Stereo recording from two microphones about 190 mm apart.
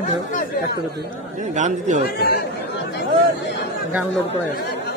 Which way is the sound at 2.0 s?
55° left (ahead or behind).